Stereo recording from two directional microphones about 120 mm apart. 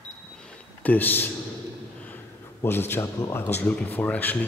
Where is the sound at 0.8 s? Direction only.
15° left (ahead or behind).